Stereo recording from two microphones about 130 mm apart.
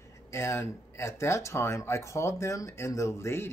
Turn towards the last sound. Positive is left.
turn(degrees=20)  # may be behind; listen again after turning